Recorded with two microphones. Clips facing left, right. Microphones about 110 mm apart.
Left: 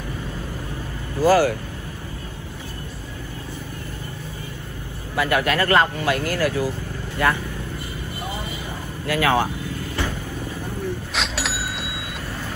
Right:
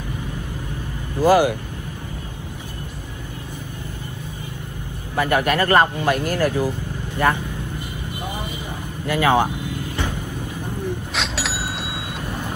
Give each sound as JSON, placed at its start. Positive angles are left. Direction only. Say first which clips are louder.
{"t": 1.2, "sound": "speech", "louder": "right 1 dB", "side_deg": -15}
{"t": 5.1, "sound": "speech", "louder": "right 2 dB", "side_deg": -20}
{"t": 8.2, "sound": "vehicle", "louder": "right 1 dB", "side_deg": -15}
{"t": 9.0, "sound": "speech", "louder": "right 2 dB", "side_deg": -15}
{"t": 11.1, "sound": "vehicle", "louder": "right 1 dB", "side_deg": 0}
{"t": 12.3, "sound": "vehicle", "louder": "right 4 dB", "side_deg": -15}